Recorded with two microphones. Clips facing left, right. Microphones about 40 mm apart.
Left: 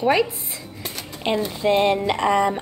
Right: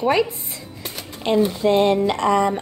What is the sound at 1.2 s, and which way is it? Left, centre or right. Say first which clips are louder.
Speech: right 3 dB; centre.